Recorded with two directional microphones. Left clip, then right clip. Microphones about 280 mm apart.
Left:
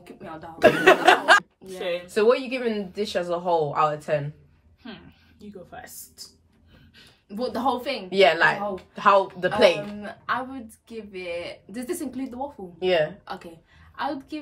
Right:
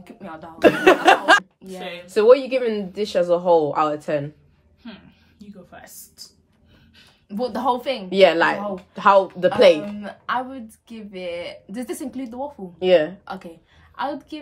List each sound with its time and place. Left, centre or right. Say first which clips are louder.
0.0 s chuckle: right 2 dB; centre
0.6 s a woman's voice: right 2 dB; right
1.6 s a woman's voice: left 4 dB; centre
2.0 s a woman's voice: right 7 dB; right
4.8 s a woman's voice: even; centre
8.1 s a woman's voice: right 3 dB; right
9.9 s speech: right 3 dB; centre
12.7 s a woman's voice: right 6 dB; right
13.2 s speech: right 3 dB; centre